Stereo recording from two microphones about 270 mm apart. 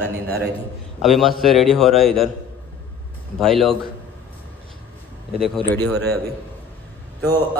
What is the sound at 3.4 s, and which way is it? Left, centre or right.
Speech, centre.